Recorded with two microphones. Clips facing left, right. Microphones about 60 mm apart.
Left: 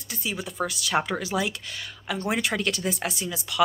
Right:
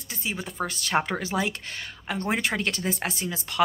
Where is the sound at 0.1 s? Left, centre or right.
Right.